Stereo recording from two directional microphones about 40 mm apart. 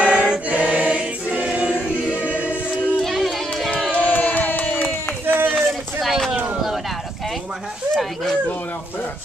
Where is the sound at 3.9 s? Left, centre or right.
Left.